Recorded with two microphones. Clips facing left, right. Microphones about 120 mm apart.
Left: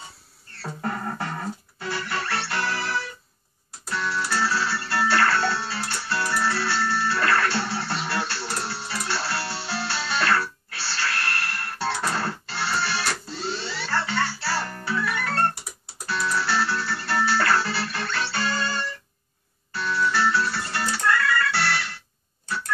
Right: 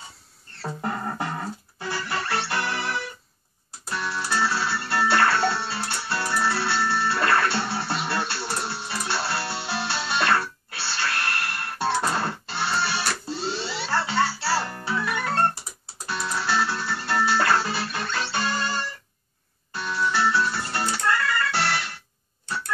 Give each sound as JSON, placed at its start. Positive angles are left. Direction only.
{"t": 0.6, "sound": "music", "side_deg": -15}
{"t": 19.7, "sound": "organ", "side_deg": -20}